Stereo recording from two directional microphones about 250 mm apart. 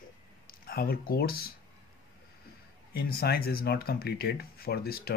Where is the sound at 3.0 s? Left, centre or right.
Left.